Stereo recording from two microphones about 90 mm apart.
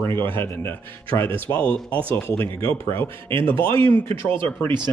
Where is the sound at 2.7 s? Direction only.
30° left (ahead or behind).